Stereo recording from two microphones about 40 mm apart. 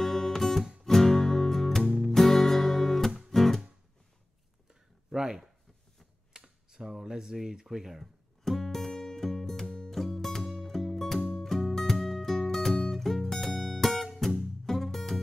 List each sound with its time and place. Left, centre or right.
0.0 s music: centre
4.6 s a sound: centre
6.3 s speech: centre
8.5 s music: centre
11.1 s music: left
11.4 s music: centre